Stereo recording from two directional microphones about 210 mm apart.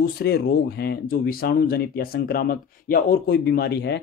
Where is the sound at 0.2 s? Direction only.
50° left (ahead or behind).